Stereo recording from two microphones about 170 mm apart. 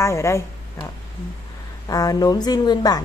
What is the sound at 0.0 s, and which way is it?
Speech, 15° left (ahead or behind).